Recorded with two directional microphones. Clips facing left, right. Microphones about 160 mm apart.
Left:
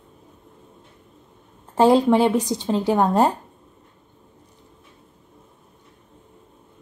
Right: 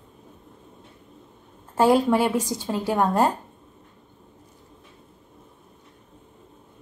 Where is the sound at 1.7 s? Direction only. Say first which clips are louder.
Left 3 dB; 25° left (ahead or behind).